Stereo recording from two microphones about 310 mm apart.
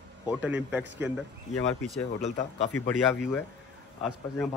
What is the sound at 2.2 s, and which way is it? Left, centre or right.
Speech, centre.